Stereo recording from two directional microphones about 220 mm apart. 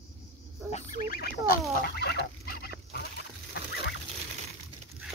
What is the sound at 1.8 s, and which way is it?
Fowl, 45° left (ahead or behind).